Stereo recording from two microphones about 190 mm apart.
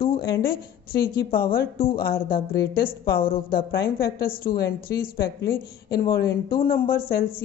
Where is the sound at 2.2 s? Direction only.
50° left (ahead or behind).